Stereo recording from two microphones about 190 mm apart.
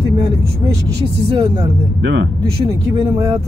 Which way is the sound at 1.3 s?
20° right (ahead or behind).